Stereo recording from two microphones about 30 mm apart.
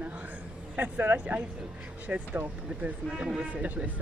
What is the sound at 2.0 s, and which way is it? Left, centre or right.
Speech, right.